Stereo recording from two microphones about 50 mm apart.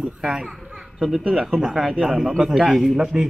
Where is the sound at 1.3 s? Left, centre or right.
Centre.